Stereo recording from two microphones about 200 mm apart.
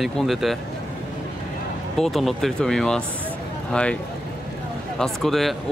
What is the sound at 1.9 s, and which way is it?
Speech, centre (ahead or behind).